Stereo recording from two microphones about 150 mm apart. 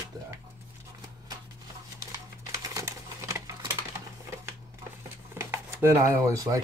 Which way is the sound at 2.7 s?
20° right (ahead or behind).